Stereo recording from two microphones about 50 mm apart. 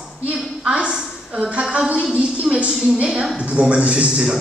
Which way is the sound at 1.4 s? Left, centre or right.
Right.